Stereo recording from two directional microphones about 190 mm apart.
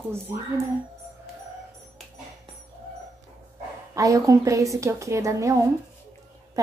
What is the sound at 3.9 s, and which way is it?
A woman's voice, 15° right (ahead or behind).